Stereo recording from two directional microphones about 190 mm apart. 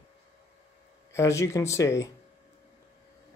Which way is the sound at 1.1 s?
15° left (ahead or behind).